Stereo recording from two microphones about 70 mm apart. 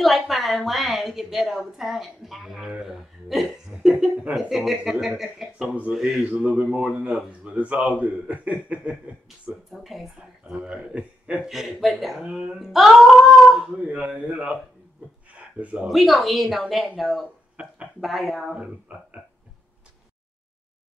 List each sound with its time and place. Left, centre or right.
0.0 s a woman's voice: centre
4.5 s a woman's voice: centre
6.2 s speech: centre
9.5 s a woman's voice: centre
10.5 s a man's voice: centre
11.4 s a woman's voice: centre
13.6 s speech: centre
15.3 s a sound: centre
15.9 s a woman's voice: centre
17.6 s a sound: right
18.0 s speech: centre